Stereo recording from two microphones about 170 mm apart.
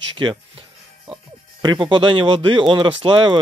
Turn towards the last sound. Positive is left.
turn(degrees=-30)  # may be behind; listen again after turning